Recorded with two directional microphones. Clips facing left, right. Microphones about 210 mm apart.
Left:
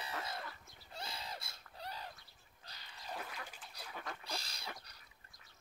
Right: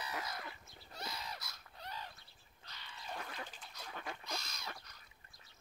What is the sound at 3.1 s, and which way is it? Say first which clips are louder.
Duck: even; centre (ahead or behind).